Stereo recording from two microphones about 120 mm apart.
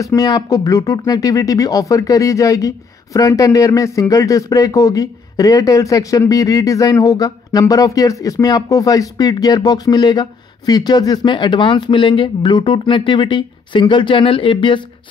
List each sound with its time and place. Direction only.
0.0 s speech: 30° left (ahead or behind)